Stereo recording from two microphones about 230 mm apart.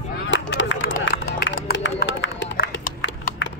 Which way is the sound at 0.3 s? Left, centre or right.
Left.